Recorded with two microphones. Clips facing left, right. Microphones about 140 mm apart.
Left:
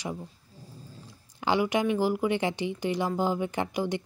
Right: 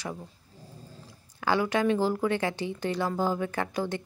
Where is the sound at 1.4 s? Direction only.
15° left (ahead or behind).